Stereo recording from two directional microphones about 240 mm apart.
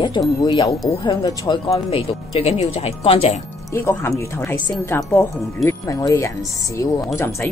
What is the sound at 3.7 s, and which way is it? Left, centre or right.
Speech, centre.